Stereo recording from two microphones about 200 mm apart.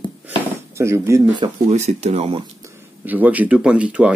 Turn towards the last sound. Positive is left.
turn(degrees=-5)  # may be behind; listen again after turning